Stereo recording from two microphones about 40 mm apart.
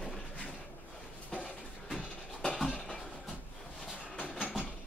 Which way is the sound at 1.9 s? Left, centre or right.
Left.